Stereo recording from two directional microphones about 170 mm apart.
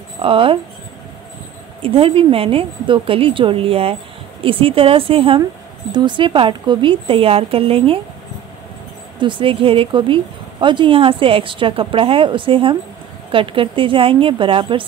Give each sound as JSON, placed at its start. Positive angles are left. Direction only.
{"t": 0.2, "sound": "a woman's voice", "side_deg": -30}
{"t": 1.8, "sound": "a woman's voice", "side_deg": -30}
{"t": 9.2, "sound": "a woman's voice", "side_deg": -30}